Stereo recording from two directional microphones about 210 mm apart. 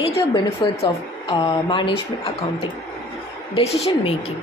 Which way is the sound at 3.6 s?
30° left (ahead or behind).